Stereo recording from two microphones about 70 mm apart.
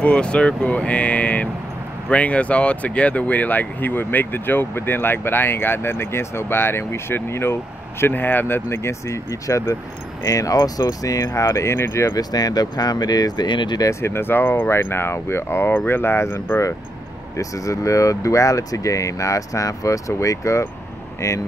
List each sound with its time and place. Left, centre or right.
0.0 s speech: centre; by 12.1 s left
12.1 s speech: left
13.8 s speech: left
17.4 s speech: left